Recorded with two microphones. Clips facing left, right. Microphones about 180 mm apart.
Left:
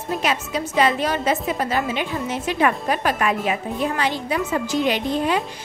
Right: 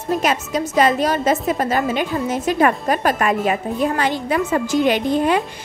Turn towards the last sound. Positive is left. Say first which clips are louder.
# right 4 dB
turn(degrees=-50)  # may be behind; listen again after turning